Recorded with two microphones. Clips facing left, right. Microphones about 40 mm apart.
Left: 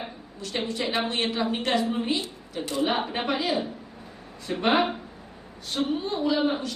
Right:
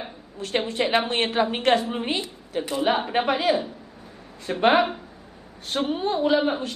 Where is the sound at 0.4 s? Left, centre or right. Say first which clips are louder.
Right 5 dB; right.